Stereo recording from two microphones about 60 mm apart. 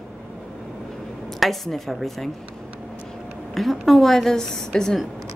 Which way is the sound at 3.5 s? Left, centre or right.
Centre.